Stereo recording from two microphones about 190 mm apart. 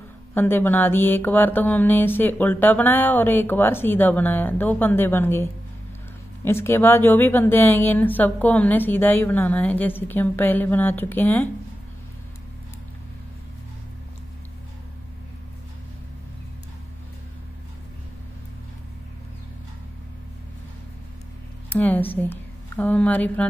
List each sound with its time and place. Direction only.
0.3 s mantra: 10° left (ahead or behind)
21.6 s a woman's voice: 10° left (ahead or behind)